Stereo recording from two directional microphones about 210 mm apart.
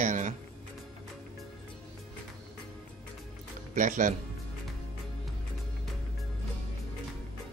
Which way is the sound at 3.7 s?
40° right (ahead or behind).